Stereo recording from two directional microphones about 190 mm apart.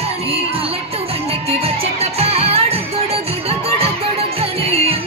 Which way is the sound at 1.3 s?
30° right (ahead or behind).